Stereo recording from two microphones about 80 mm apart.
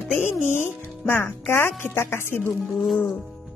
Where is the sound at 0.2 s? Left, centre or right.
Left.